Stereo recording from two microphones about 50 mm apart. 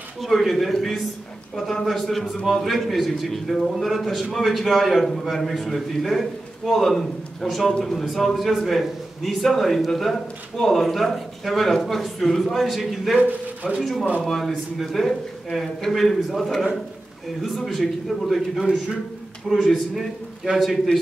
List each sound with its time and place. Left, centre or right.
0.2 s a man's voice: centre
13.2 s speech: right
13.7 s a man's voice: centre